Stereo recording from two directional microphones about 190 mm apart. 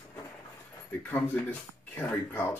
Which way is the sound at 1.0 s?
10° left (ahead or behind).